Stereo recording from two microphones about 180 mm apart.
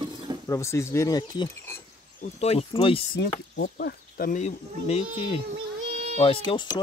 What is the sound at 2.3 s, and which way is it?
Speech, 35° left (ahead or behind).